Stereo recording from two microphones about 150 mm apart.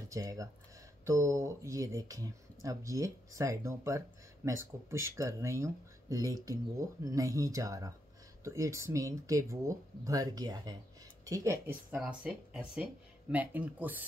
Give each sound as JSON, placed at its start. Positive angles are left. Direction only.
{"t": 0.1, "sound": "speech", "side_deg": -20}